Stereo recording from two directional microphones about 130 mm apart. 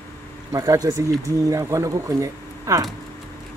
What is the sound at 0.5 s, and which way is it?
Speech, 25° right (ahead or behind).